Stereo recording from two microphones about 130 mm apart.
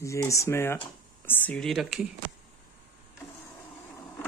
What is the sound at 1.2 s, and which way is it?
Speech, 10° left (ahead or behind).